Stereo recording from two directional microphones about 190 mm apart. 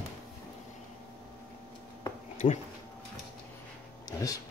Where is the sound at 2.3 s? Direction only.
40° left (ahead or behind).